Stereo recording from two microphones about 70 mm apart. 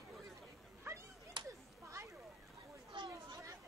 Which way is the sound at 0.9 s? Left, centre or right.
Right.